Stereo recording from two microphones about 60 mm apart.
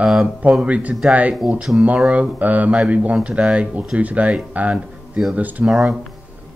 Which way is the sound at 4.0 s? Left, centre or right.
Right.